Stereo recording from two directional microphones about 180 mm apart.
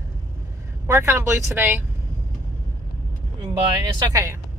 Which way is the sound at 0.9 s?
15° right (ahead or behind).